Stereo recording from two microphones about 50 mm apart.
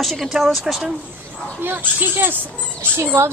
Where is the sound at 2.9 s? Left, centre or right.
Right.